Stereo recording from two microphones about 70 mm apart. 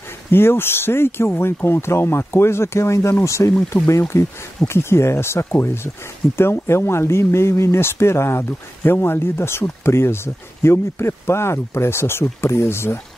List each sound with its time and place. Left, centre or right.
0.3 s speech: left